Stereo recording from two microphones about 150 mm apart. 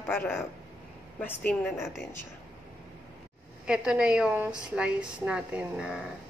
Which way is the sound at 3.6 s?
5° right (ahead or behind).